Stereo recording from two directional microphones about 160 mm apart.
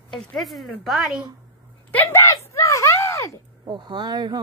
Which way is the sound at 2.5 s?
20° left (ahead or behind).